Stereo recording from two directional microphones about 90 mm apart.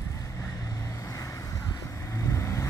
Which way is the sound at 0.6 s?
40° left (ahead or behind).